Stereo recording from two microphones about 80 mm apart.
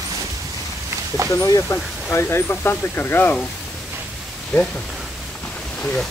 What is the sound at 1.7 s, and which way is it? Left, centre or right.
Speech, left.